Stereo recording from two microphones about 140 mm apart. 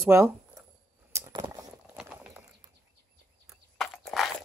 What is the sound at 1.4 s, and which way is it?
Clip-clop, 10° right (ahead or behind).